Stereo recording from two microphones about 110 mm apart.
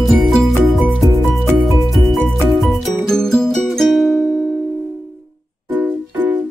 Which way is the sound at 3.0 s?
5° left (ahead or behind).